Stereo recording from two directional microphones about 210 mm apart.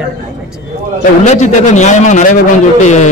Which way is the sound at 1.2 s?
35° left (ahead or behind).